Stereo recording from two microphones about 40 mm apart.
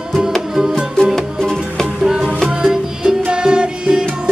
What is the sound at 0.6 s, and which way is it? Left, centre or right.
Music, centre.